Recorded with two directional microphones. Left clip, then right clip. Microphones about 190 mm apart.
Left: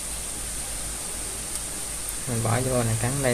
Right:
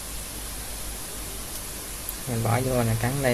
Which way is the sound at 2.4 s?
5° right (ahead or behind).